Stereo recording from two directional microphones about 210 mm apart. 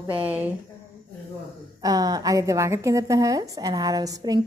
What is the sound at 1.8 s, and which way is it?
A woman's voice, 15° right (ahead or behind).